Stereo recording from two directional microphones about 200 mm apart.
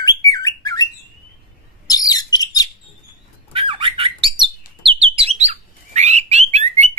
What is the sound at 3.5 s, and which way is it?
Squawk, 25° right (ahead or behind).